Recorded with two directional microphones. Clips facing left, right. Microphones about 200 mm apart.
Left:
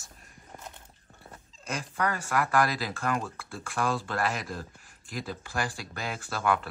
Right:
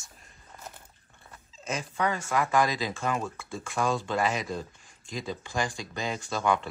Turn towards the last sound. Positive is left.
turn(degrees=5)  # may be behind; listen again after turning